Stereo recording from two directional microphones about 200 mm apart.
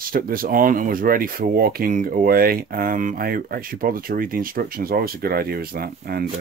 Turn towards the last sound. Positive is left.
turn(degrees=-50)  # may be behind; listen again after turning